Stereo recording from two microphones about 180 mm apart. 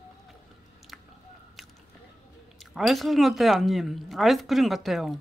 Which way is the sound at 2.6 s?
Centre (ahead or behind).